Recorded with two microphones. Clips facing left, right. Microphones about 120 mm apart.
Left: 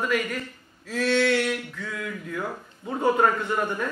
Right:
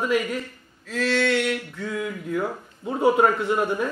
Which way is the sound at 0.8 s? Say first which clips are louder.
Even; 5° left (ahead or behind).